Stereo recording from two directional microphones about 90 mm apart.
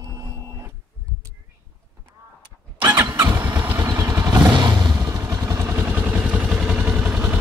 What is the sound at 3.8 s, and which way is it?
Vehicle, 35° right (ahead or behind).